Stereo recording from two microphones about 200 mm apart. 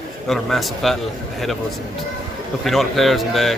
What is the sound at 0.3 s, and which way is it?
Speech, centre (ahead or behind).